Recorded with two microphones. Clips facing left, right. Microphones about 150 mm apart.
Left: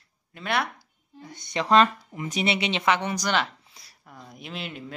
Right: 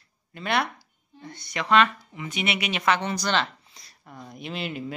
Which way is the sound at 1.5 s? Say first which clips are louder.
Left 2 dB; 35° left (ahead or behind).